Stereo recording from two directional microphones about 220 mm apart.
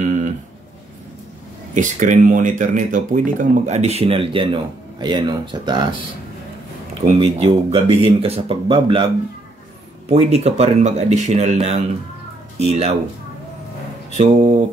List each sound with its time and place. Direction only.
1.8 s speech: 35° right (ahead or behind)
7.1 s speech: 25° right (ahead or behind)
14.1 s speech: 30° right (ahead or behind)